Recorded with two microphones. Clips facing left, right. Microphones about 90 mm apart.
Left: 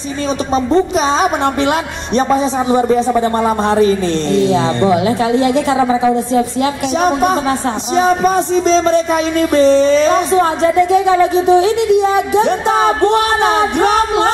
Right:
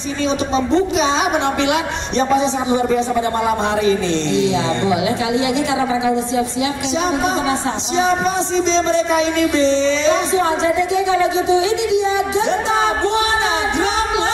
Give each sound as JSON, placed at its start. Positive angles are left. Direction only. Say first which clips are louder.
{"t": 0.9, "sound": "speech", "louder": "left 3 dB", "side_deg": 40}
{"t": 3.6, "sound": "speech", "louder": "left 4 dB", "side_deg": 45}